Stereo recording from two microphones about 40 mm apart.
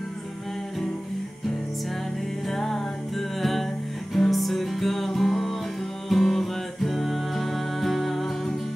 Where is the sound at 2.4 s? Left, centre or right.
Centre.